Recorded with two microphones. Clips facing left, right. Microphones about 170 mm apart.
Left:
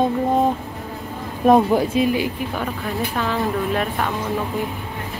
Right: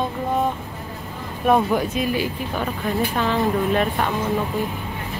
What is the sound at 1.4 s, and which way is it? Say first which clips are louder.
Speech: left 4 dB; 30° left (ahead or behind).